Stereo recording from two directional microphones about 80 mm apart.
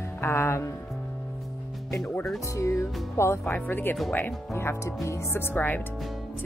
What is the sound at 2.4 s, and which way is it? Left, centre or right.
Speech, left.